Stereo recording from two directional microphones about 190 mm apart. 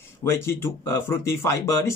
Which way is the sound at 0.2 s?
15° left (ahead or behind).